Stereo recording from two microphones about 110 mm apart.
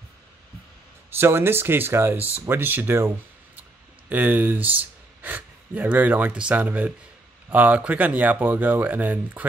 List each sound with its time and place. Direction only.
1.1 s speech: 20° right (ahead or behind)
4.1 s speech: 15° right (ahead or behind)